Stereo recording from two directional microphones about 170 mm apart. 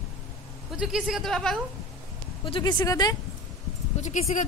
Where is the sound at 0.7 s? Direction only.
5° right (ahead or behind).